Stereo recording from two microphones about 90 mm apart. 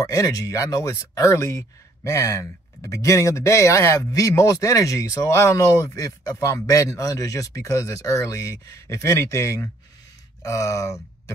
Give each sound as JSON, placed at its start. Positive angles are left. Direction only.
{"t": 0.0, "sound": "speech", "side_deg": 35}